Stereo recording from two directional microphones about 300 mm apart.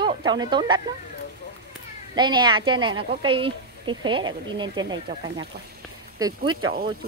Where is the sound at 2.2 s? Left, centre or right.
Centre.